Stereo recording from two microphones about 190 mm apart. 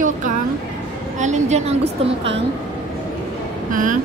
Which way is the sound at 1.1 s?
40° right (ahead or behind).